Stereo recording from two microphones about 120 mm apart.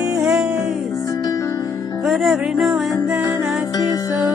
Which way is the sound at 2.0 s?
Centre (ahead or behind).